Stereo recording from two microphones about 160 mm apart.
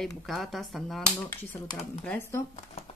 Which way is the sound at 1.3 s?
10° left (ahead or behind).